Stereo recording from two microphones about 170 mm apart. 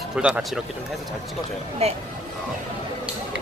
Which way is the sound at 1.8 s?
35° right (ahead or behind).